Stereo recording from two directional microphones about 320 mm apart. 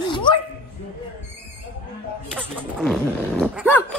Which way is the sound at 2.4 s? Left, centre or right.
Centre.